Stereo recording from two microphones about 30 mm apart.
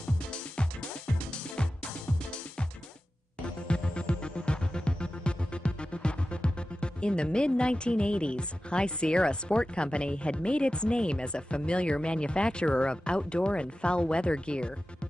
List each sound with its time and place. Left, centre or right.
3.4 s music: left